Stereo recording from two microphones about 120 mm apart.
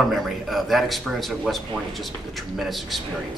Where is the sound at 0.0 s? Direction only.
Centre (ahead or behind).